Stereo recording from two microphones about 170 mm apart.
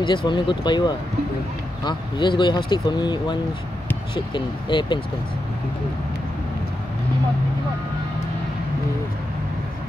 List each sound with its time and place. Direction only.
0.0 s speech: 25° left (ahead or behind)